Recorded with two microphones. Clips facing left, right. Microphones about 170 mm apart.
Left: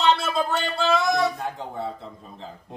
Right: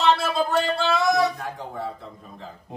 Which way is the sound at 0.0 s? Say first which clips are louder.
Right 1 dB; centre (ahead or behind).